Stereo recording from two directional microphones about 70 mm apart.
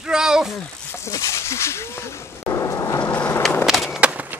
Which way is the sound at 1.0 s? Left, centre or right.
Left.